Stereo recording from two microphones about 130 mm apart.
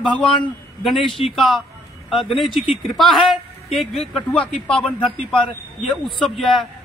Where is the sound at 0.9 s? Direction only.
40° left (ahead or behind).